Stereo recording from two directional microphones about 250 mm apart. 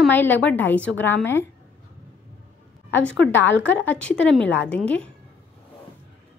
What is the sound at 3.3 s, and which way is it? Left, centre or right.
Speech, left.